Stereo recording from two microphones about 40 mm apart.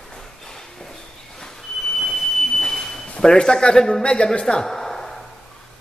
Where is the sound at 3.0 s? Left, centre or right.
Left.